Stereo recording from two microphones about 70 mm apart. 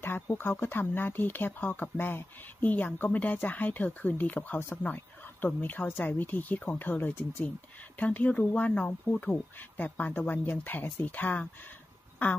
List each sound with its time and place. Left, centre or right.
0.0 s speech: left